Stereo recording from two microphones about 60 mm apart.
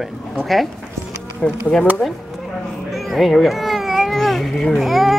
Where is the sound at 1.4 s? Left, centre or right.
Centre.